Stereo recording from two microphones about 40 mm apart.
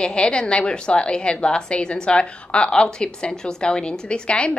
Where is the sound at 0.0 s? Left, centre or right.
Left.